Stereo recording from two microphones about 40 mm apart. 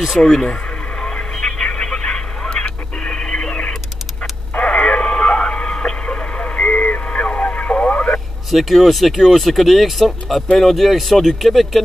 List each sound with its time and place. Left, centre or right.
0.2 s speech: left
1.0 s a sound: left
2.6 s music: left
4.6 s radio: left
8.5 s speech: centre